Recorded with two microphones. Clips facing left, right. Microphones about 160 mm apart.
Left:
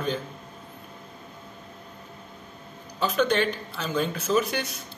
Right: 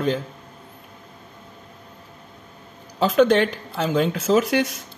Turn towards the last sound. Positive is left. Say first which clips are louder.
# right 6 dB
turn(degrees=-90)